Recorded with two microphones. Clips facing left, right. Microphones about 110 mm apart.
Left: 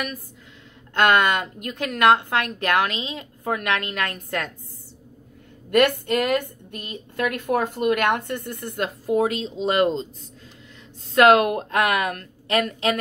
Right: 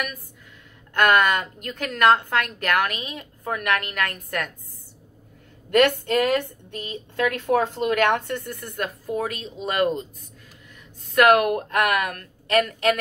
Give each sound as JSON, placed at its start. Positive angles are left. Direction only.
{"t": 0.9, "sound": "a woman's voice", "side_deg": 20}
{"t": 5.8, "sound": "a woman's voice", "side_deg": 15}
{"t": 11.1, "sound": "a woman's voice", "side_deg": 25}